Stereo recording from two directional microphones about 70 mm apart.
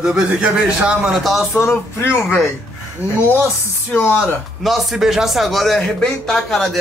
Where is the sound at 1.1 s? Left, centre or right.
Centre.